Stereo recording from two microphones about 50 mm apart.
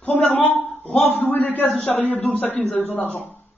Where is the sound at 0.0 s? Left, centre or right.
Left.